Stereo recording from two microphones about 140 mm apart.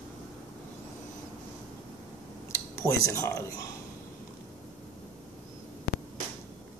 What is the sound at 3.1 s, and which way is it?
Speech, 20° left (ahead or behind).